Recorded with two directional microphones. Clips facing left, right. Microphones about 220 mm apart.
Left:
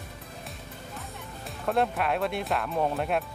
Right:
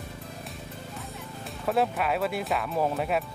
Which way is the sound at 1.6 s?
5° right (ahead or behind).